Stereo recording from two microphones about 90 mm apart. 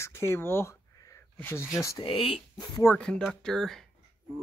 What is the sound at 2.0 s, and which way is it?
Speech, 80° left.